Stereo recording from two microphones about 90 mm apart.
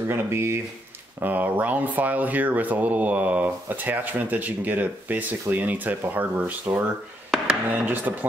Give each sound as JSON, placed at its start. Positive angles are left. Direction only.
{"t": 0.1, "sound": "speech", "side_deg": -30}
{"t": 7.2, "sound": "chopping", "side_deg": -15}